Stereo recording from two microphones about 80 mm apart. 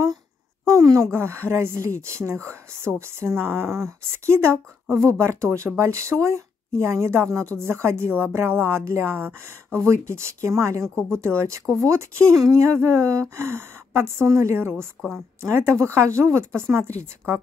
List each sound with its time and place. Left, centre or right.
0.7 s speech: right
15.0 s a woman's voice: centre
15.5 s speech: right